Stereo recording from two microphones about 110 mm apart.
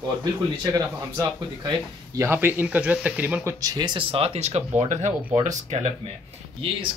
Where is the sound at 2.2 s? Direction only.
20° right (ahead or behind).